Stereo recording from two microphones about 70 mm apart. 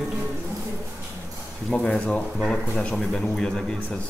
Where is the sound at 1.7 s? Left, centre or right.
Centre.